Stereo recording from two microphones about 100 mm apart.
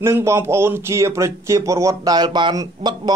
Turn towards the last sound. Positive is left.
turn(degrees=-45)  # may be behind; listen again after turning